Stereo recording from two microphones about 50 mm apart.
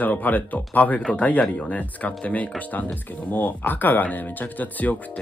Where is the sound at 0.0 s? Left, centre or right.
Left.